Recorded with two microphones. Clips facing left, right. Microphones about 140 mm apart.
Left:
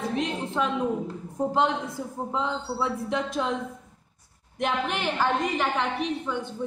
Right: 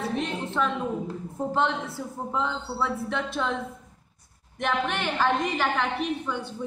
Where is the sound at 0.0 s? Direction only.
15° left (ahead or behind).